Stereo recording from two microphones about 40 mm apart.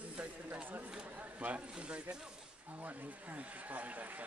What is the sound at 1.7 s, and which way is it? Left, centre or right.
Speech, right.